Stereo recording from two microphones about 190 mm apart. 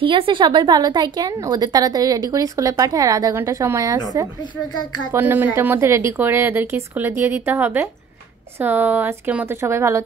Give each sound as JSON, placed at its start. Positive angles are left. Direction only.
{"t": 0.0, "sound": "a woman's voice", "side_deg": -25}